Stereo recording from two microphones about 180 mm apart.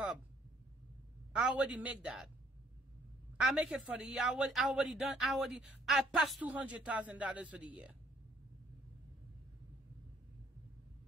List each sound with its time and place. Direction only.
1.3 s a man's voice: 5° right (ahead or behind)
3.3 s a woman's voice: 5° right (ahead or behind)